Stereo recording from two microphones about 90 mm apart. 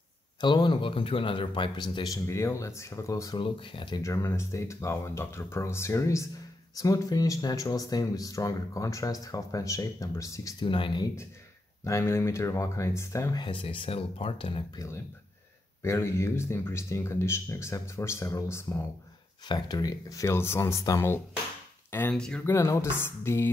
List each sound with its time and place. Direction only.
0.4 s a man's voice: 60° left (ahead or behind)
2.2 s speech: 35° left (ahead or behind)
3.3 s a man's voice: 70° left (ahead or behind)
4.0 s speech: 35° left (ahead or behind)
10.6 s speech: 65° left (ahead or behind)
11.8 s speech: 30° left (ahead or behind)
13.4 s speech: 70° left (ahead or behind); by 14.6 s 90° left
15.8 s speech: 30° left (ahead or behind)
19.4 s speech: 50° left (ahead or behind); by 21.1 s 35° left (ahead or behind)
22.1 s speech: 10° left (ahead or behind)
22.4 s speech: 35° left (ahead or behind)